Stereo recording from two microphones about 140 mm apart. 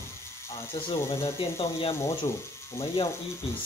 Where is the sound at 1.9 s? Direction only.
20° left (ahead or behind).